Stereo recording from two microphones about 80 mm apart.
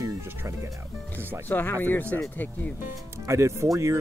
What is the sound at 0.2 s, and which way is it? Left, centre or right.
Music, right.